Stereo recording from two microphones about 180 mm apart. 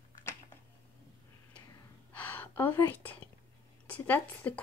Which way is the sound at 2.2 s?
10° left (ahead or behind).